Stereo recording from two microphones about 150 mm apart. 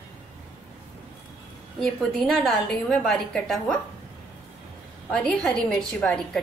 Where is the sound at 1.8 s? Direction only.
5° left (ahead or behind).